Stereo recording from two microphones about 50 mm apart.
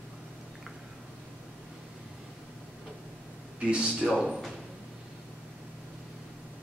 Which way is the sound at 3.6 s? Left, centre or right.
Right.